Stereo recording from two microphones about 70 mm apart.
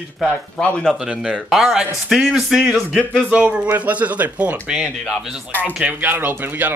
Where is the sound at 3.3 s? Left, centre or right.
Centre.